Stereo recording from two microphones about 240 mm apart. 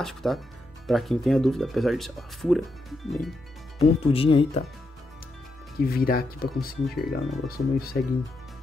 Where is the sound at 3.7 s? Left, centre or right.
Left.